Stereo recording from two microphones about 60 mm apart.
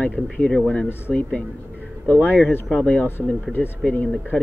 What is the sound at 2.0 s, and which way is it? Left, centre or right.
Speech, left.